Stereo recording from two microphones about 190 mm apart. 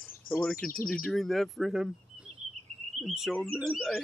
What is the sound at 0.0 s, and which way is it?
Speech, 5° left (ahead or behind).